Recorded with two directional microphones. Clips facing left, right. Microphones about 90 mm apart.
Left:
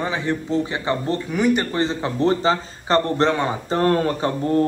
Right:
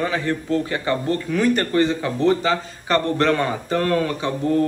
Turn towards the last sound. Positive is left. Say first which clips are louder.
# left 1 dB
turn(degrees=35)  # may be behind; listen again after turning